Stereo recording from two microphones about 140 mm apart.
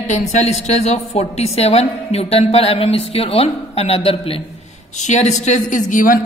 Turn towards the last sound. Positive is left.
turn(degrees=70)  # may be behind; listen again after turning